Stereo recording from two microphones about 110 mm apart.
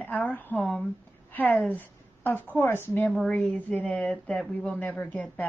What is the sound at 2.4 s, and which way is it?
Speech, 15° left (ahead or behind).